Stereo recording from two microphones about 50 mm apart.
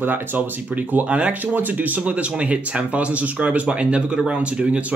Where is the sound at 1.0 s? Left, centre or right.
Right.